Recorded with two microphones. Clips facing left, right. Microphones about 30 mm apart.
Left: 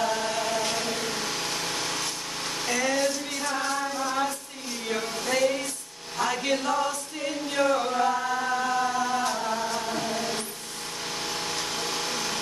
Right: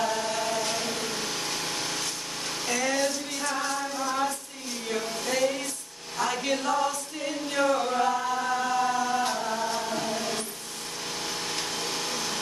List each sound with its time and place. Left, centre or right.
0.3 s a sound: centre
0.6 s vehicle: left
1.2 s engine: centre
1.5 s a sound: centre
2.7 s female singing: centre
5.2 s a sound: centre
6.1 s choir: centre
8.3 s chant: centre
11.6 s wood: centre